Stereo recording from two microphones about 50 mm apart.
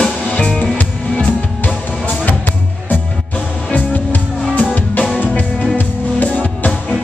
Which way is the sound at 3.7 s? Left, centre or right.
Left.